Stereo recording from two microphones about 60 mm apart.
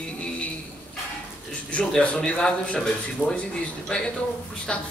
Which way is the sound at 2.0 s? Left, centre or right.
Centre.